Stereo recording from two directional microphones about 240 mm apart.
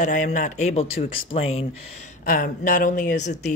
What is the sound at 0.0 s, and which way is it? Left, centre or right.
Speech, left.